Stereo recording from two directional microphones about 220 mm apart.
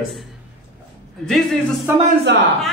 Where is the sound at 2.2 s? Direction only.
55° right (ahead or behind).